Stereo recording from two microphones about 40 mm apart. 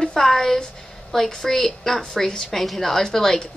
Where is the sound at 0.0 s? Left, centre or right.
Centre.